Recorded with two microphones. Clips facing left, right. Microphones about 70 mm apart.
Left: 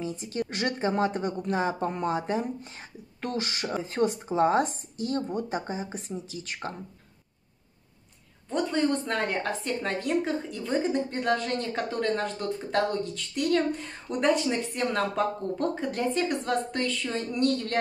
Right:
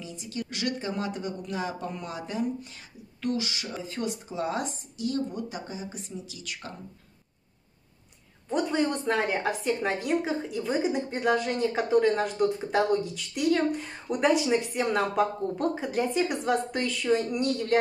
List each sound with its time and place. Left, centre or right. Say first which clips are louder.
0.0 s speech: left 5 dB; left
8.5 s a woman's voice: even; centre